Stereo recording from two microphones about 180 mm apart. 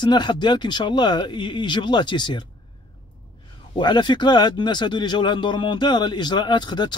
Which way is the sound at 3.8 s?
25° left (ahead or behind).